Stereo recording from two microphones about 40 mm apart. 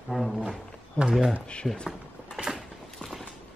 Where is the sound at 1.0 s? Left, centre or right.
Left.